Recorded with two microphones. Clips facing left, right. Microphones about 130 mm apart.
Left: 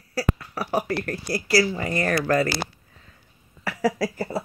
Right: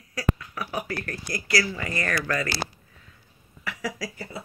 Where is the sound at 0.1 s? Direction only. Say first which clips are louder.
Left 2 dB; 35° left (ahead or behind).